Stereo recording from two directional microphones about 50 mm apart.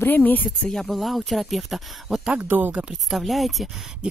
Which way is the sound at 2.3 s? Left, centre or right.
Right.